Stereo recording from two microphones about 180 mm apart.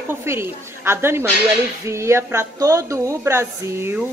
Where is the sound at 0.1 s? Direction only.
15° right (ahead or behind).